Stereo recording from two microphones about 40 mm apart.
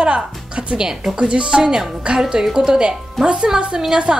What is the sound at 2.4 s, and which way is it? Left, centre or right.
Speech, centre.